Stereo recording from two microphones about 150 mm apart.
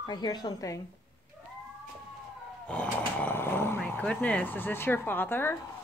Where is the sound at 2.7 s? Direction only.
10° left (ahead or behind).